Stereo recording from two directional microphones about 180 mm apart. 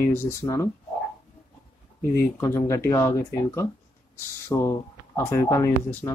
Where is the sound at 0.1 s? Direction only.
15° left (ahead or behind).